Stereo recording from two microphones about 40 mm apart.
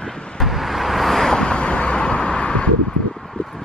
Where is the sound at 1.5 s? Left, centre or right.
Left.